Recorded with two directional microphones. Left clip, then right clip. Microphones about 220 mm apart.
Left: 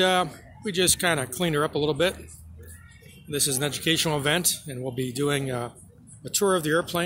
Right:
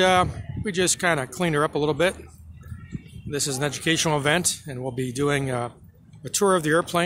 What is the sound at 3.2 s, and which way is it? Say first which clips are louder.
Speech: right 1 dB; 10° right (ahead or behind).